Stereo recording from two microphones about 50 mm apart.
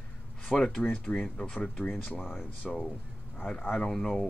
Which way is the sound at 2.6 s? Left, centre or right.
Centre.